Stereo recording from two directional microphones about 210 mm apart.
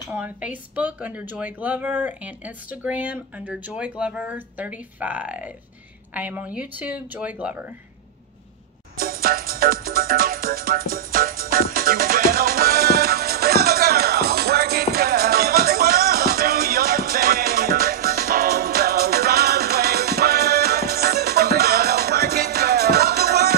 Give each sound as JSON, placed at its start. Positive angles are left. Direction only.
{"t": 0.1, "sound": "speech", "side_deg": -10}
{"t": 8.9, "sound": "music", "side_deg": -45}